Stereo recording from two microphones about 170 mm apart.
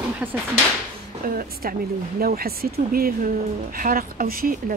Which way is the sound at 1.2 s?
55° right (ahead or behind).